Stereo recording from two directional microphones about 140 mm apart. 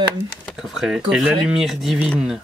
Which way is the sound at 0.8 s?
5° right (ahead or behind).